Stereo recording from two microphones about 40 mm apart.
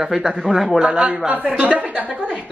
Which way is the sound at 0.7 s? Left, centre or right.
Right.